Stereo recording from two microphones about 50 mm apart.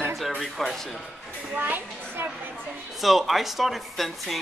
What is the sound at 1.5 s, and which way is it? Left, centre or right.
Speech, right.